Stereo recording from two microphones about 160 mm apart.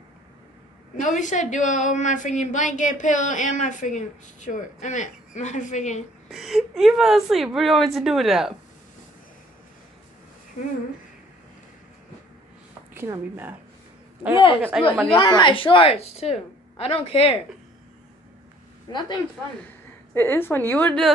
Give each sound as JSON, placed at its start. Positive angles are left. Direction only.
{"t": 1.0, "sound": "a woman's voice", "side_deg": 50}
{"t": 6.3, "sound": "a woman's voice", "side_deg": 0}
{"t": 12.9, "sound": "speech", "side_deg": -15}
{"t": 14.7, "sound": "a woman's voice", "side_deg": -5}
{"t": 15.0, "sound": "a woman's voice", "side_deg": 30}
{"t": 18.9, "sound": "speech", "side_deg": 30}
{"t": 20.2, "sound": "a woman's voice", "side_deg": 15}